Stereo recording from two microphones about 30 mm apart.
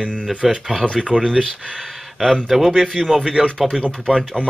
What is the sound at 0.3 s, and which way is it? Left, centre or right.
Speech, right.